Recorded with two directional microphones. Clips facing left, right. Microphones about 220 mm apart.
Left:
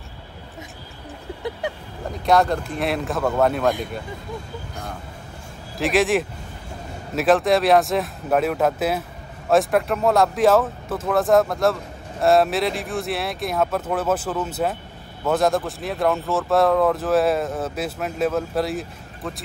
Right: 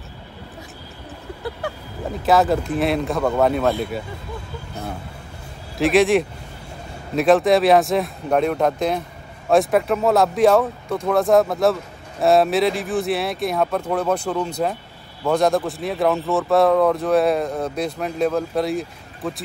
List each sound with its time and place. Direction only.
1.6 s vehicle: 20° left (ahead or behind)
2.2 s speech: 5° right (ahead or behind)
5.8 s speech: centre (ahead or behind)